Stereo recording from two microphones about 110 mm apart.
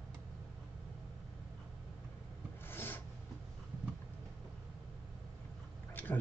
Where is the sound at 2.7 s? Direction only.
20° left (ahead or behind).